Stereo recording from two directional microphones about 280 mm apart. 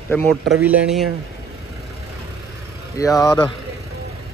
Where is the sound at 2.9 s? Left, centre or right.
Centre.